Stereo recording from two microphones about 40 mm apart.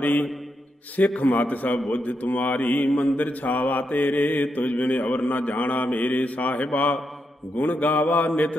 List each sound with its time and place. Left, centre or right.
0.0 s mantra: left
7.5 s mantra: left